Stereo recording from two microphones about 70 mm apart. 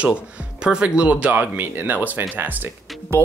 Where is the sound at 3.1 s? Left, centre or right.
Right.